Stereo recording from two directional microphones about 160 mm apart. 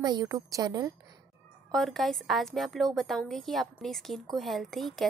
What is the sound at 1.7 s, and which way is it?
A woman's voice, centre (ahead or behind).